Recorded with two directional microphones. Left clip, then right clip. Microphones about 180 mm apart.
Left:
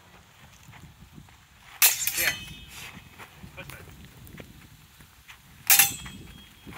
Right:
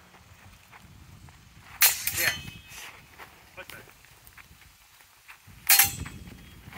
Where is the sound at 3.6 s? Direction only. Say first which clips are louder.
Even; 20° left (ahead or behind).